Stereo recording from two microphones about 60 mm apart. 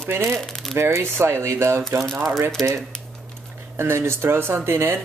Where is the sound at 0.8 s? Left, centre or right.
Right.